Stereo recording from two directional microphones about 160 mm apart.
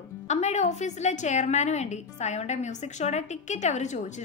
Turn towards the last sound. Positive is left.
turn(degrees=45)  # may be behind; listen again after turning